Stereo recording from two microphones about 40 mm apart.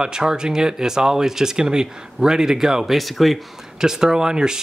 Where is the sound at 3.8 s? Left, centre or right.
Centre.